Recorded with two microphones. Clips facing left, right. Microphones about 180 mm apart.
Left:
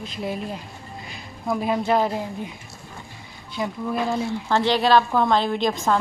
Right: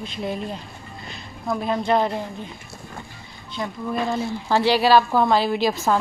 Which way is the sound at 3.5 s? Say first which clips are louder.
Left 1 dB; 5° left (ahead or behind).